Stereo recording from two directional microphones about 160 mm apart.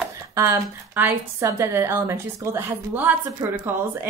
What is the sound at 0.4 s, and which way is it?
A woman's voice, 15° right (ahead or behind).